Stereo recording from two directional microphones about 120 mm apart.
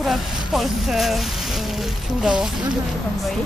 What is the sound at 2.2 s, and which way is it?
Speech, 5° right (ahead or behind).